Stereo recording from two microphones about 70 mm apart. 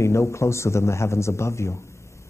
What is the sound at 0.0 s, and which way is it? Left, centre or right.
Speech, left.